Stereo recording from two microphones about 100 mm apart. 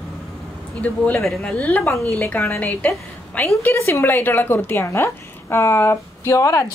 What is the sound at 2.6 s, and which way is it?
A woman's voice, 15° left (ahead or behind).